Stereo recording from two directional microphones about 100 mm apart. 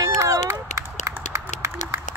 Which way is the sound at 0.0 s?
30° right (ahead or behind).